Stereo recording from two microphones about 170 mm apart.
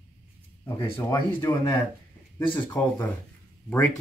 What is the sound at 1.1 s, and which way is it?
Speech, 25° left (ahead or behind).